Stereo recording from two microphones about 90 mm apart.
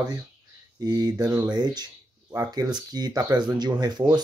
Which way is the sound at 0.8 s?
45° right (ahead or behind).